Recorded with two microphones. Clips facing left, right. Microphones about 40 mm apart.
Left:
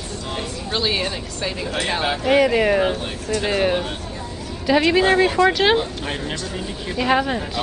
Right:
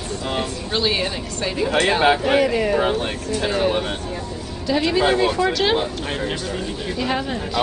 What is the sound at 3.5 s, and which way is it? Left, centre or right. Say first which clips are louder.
Speech: left 1 dB; centre.